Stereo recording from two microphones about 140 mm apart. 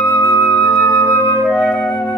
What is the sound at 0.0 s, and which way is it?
Flute, 10° left (ahead or behind).